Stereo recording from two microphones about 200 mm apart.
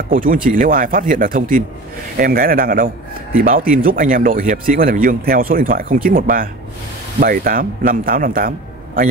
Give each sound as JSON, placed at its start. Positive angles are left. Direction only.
{"t": 0.1, "sound": "speech", "side_deg": -45}